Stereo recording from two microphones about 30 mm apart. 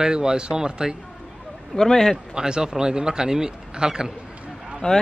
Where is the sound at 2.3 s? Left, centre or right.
Right.